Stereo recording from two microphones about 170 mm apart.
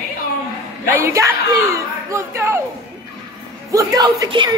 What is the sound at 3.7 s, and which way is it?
Speech, 20° right (ahead or behind).